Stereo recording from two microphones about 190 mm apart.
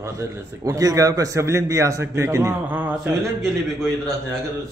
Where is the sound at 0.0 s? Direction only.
15° right (ahead or behind).